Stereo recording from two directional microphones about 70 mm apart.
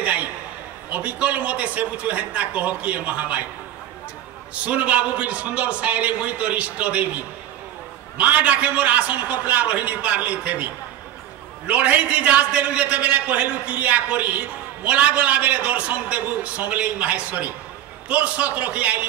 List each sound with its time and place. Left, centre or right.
0.0 s a sound: right
0.8 s a man's voice: right
4.6 s a man's voice: right